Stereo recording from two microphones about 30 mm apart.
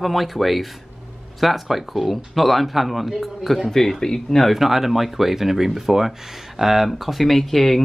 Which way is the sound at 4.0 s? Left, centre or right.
Centre.